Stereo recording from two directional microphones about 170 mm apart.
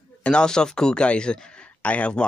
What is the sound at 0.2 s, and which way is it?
Speech, 5° left (ahead or behind).